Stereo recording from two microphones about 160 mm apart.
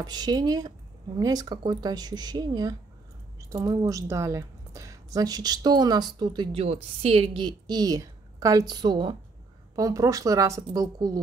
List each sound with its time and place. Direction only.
0.0 s a woman's voice: 25° right (ahead or behind)